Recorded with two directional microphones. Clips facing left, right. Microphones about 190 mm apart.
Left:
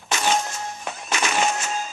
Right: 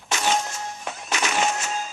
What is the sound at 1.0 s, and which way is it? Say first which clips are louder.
Music: left 1 dB; 50° left (ahead or behind).